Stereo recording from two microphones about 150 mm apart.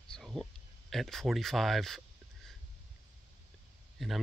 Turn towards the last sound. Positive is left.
turn(degrees=0)  # may be behind; listen again after turning